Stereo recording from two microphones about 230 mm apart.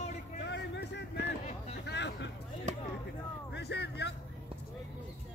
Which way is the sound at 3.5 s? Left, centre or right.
Left.